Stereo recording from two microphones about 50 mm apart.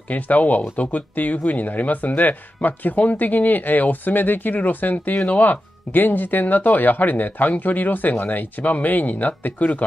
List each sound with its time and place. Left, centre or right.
0.1 s speech: left